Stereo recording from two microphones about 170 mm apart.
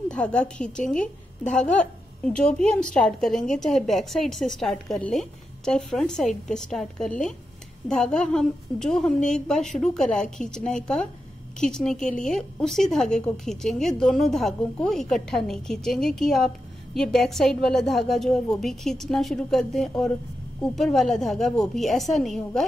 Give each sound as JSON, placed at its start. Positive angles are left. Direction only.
{"t": 0.1, "sound": "a woman's voice", "side_deg": 5}